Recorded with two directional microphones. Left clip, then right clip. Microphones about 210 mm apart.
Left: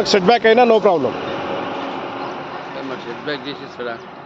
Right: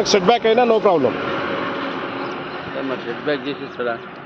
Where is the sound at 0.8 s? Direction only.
Centre (ahead or behind).